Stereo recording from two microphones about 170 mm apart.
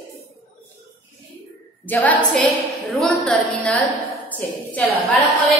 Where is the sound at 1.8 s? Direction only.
10° left (ahead or behind).